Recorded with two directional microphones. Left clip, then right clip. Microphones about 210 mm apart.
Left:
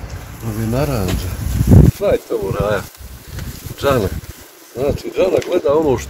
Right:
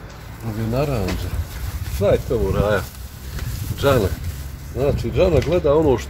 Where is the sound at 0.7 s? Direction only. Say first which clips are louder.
Left 2 dB; 15° left (ahead or behind).